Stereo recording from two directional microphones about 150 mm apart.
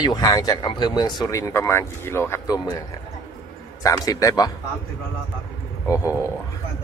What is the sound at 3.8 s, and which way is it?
Speech, 25° left (ahead or behind).